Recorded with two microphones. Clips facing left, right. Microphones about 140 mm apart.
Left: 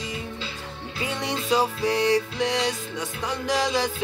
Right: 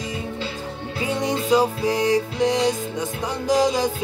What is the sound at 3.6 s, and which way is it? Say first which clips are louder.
Music: right 5 dB; 15° right (ahead or behind).